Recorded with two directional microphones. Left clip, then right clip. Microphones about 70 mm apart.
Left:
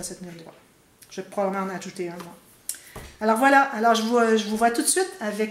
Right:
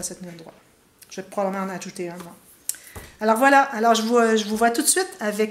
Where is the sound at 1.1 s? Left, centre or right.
Right.